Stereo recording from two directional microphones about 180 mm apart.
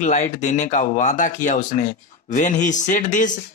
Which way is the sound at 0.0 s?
40° left (ahead or behind).